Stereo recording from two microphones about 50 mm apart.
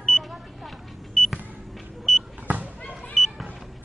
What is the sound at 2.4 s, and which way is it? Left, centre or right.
Basketball bounce, right.